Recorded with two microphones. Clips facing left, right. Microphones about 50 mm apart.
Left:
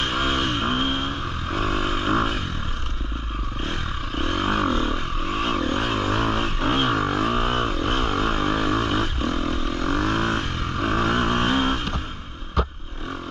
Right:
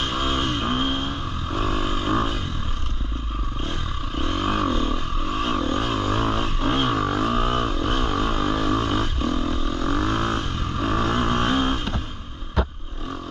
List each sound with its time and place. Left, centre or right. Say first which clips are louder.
0.0 s vehicle: left 1 dB; left
3.6 s vehicle: left 3 dB; left
4.6 s a sound: left 1 dB; centre
4.9 s vehicle: even; left
10.0 s vehicle: left 1 dB; centre
10.3 s vehicle: left 1 dB; left